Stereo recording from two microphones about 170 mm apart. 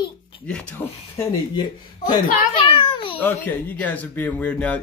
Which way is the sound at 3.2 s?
10° left (ahead or behind).